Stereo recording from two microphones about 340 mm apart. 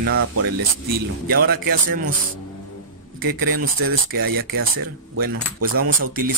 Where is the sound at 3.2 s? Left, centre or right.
Right.